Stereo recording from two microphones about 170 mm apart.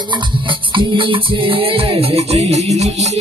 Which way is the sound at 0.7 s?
30° right (ahead or behind).